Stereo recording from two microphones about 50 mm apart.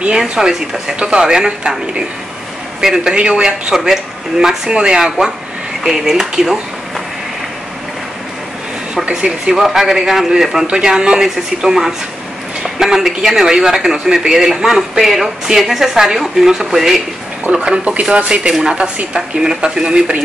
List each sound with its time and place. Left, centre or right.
0.1 s speech: centre
3.1 s speech: centre
8.9 s a man's voice: centre
17.5 s speech: centre